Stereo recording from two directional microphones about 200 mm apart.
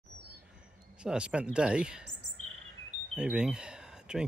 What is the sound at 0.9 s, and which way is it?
Speech, 5° right (ahead or behind).